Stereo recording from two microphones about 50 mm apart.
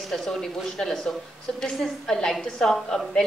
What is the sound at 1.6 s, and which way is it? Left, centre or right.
A woman's voice, centre.